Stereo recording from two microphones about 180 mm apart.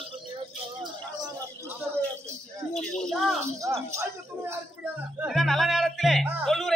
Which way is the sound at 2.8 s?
Centre (ahead or behind).